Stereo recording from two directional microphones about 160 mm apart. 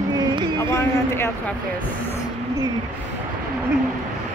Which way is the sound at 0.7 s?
15° left (ahead or behind).